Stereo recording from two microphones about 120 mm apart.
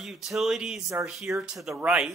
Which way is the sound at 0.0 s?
Centre (ahead or behind).